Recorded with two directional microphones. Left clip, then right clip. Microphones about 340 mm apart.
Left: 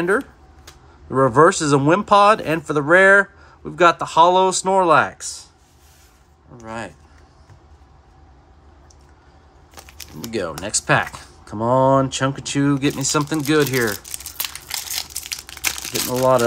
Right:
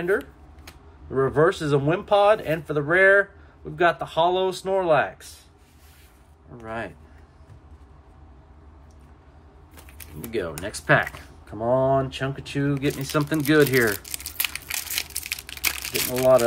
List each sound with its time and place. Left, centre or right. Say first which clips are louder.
0.0 s speech: left 5 dB; centre
6.5 s speech: left 1 dB; centre
10.3 s speech: left 5 dB; centre
15.0 s crumpling: left 2 dB; centre
16.2 s speech: left 1 dB; centre